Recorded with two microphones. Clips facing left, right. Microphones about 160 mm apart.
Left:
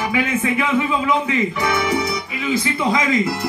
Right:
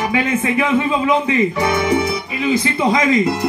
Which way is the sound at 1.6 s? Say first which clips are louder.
Right 3 dB; 20° right (ahead or behind).